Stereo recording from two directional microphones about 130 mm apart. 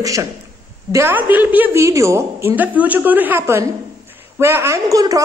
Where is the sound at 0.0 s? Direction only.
25° right (ahead or behind).